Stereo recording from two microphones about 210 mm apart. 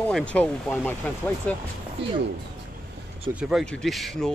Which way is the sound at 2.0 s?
55° right (ahead or behind).